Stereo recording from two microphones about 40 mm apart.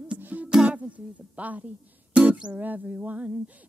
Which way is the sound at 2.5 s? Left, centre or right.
Right.